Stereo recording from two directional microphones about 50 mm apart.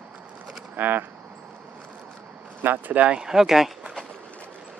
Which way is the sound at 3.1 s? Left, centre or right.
Centre.